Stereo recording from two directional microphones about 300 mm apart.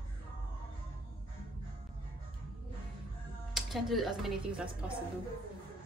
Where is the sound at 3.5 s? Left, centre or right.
Centre.